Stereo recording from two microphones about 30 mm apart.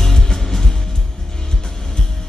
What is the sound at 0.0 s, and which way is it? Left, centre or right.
Music, centre.